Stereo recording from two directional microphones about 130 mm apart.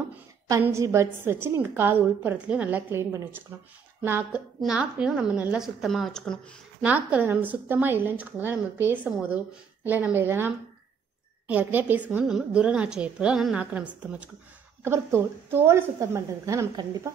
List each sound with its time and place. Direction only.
0.5 s a woman's voice: 20° right (ahead or behind); by 6.4 s 5° left (ahead or behind)
6.8 s a woman's voice: 10° right (ahead or behind)